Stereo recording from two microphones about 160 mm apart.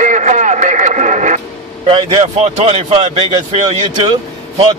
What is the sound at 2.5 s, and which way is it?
Speech, 40° right (ahead or behind).